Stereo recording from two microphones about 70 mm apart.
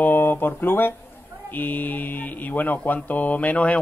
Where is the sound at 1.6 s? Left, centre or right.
Left.